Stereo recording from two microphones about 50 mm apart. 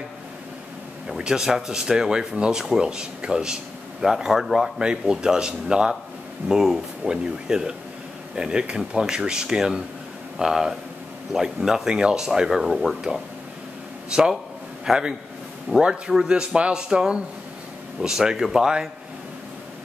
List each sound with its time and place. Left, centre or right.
1.0 s speech: centre
14.1 s speech: centre